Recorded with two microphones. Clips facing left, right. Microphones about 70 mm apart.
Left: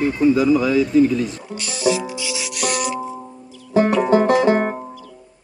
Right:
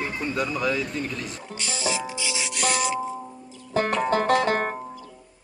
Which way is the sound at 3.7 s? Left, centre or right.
Centre.